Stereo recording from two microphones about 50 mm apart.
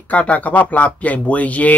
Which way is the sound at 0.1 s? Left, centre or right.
Left.